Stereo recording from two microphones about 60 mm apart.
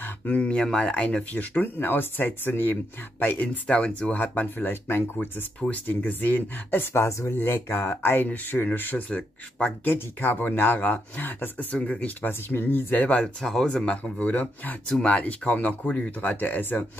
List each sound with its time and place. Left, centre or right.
0.0 s a sound: left
0.4 s speech: centre
0.9 s speech: left
5.7 s speech: left
6.9 s speech: left
11.7 s speech: centre
12.2 s speech: left
13.4 s speech: centre
14.2 s speech: left
16.2 s speech: left